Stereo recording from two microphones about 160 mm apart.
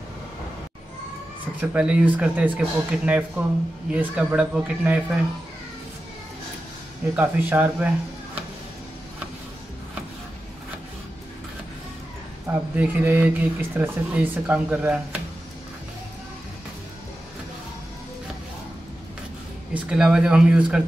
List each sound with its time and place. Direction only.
1.6 s speech: 10° right (ahead or behind)
7.2 s speech: 10° right (ahead or behind)
12.4 s speech: 10° right (ahead or behind)
19.7 s speech: 5° right (ahead or behind)